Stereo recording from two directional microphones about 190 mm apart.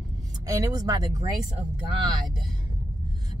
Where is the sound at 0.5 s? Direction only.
20° right (ahead or behind).